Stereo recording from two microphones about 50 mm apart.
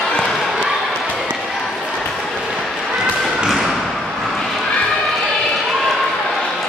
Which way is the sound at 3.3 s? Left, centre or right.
Centre.